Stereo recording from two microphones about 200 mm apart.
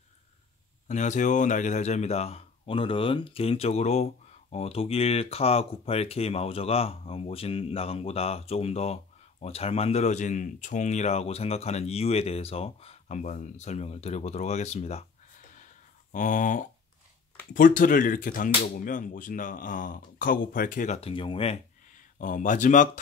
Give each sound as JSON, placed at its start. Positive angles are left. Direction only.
{"t": 0.8, "sound": "speech", "side_deg": 35}
{"t": 16.1, "sound": "speech", "side_deg": 40}
{"t": 22.2, "sound": "speech", "side_deg": 40}